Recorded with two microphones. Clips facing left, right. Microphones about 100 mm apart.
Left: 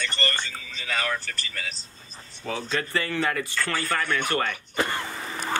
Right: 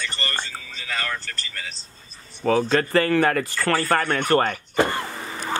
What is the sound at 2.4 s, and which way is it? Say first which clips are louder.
Speech: right 10 dB; 50° right (ahead or behind).